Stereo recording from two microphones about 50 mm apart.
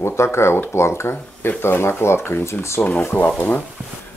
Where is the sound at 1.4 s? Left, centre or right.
Left.